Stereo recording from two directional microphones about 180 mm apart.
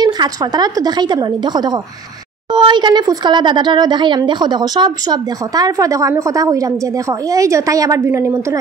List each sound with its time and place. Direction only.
0.0 s speech: 25° right (ahead or behind)